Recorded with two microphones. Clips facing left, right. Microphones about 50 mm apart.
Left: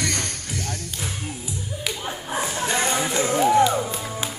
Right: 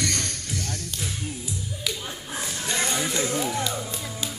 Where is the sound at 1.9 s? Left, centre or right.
Left.